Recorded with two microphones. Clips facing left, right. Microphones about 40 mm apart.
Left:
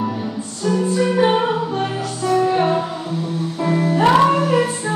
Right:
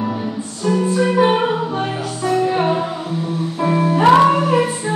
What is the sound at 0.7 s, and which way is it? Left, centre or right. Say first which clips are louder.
Music: right 1 dB; centre.